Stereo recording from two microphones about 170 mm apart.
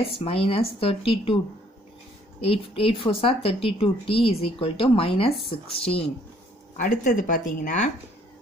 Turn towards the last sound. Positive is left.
turn(degrees=50)  # may be behind; listen again after turning